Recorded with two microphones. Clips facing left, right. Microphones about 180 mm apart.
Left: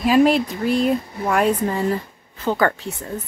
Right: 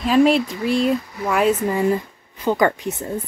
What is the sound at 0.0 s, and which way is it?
Speech, 5° left (ahead or behind).